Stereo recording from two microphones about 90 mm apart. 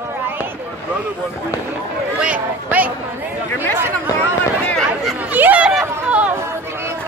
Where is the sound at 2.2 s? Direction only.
15° right (ahead or behind).